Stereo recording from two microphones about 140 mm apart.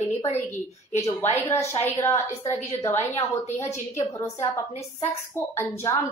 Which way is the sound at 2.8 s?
20° left (ahead or behind).